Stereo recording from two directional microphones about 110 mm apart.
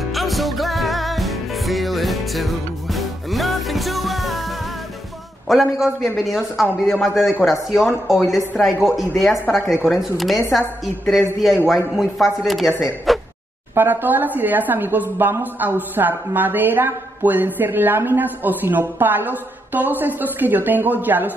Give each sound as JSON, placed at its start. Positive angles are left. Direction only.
{"t": 0.1, "sound": "music", "side_deg": 0}
{"t": 5.5, "sound": "a man's voice", "side_deg": -5}
{"t": 13.7, "sound": "a woman's voice", "side_deg": -15}